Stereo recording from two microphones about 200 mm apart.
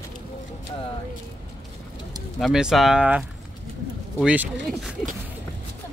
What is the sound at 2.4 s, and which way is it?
Speech, centre (ahead or behind).